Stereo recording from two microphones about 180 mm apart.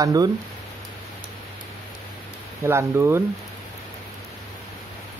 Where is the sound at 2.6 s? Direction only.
15° right (ahead or behind).